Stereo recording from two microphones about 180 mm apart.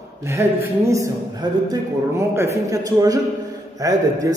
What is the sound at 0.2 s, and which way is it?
A man's voice, 15° right (ahead or behind).